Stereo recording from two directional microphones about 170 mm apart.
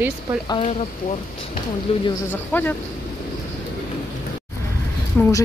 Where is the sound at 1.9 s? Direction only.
35° left (ahead or behind).